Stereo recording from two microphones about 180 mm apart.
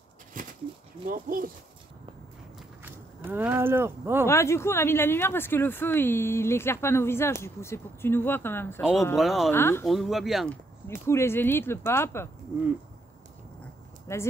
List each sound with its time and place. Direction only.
0.3 s a sound: 45° right (ahead or behind)
1.0 s speech: 50° right (ahead or behind)
2.8 s speech: 10° right (ahead or behind)
4.3 s speech: 15° left (ahead or behind)
9.1 s speech: centre (ahead or behind)
9.5 s speech: 15° left (ahead or behind)
9.8 s speech: centre (ahead or behind)
10.9 s speech: 15° left (ahead or behind)
14.1 s speech: 15° left (ahead or behind)